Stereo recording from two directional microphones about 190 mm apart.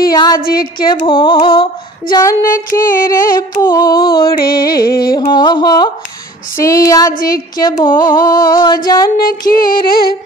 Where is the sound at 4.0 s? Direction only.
50° left (ahead or behind).